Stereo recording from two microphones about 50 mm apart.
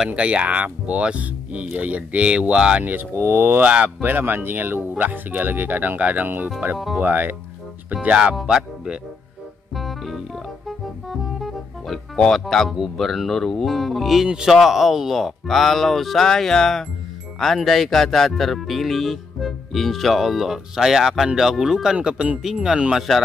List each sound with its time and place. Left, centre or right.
0.1 s speech: right
2.8 s speech: right
7.9 s speech: right
9.8 s music: centre
12.9 s speech: centre
22.0 s speech: right
22.4 s speech: centre